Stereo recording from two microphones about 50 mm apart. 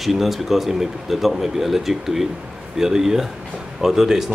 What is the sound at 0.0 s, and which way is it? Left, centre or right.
Speech, centre.